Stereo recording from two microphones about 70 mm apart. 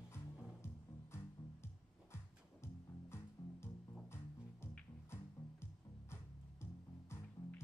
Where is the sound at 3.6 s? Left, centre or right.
Left.